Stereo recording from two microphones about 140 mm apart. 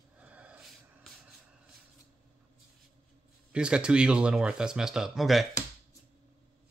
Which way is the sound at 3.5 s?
5° right (ahead or behind).